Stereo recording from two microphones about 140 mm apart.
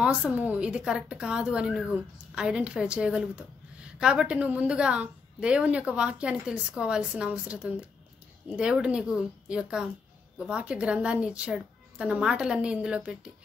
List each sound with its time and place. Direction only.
0.0 s a woman's voice: 10° right (ahead or behind)